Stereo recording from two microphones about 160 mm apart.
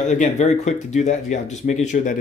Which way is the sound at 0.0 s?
50° left (ahead or behind).